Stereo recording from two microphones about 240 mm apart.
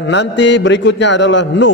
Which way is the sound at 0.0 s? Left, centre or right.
Left.